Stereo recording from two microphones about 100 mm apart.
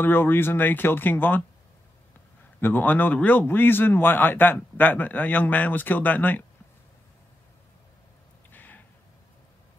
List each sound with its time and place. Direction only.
0.0 s a man's voice: 20° left (ahead or behind)
2.6 s a man's voice: 20° left (ahead or behind)
8.5 s a sound: 20° left (ahead or behind)